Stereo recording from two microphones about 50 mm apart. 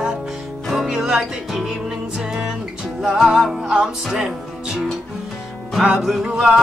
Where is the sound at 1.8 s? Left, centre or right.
Centre.